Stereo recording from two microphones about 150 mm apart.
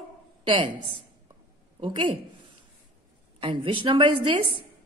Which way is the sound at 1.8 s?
35° right (ahead or behind).